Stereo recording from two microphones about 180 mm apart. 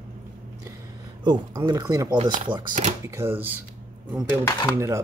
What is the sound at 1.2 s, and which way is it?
Speech, 25° right (ahead or behind).